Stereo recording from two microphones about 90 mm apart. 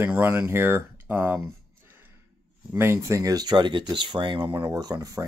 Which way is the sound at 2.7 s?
30° right (ahead or behind).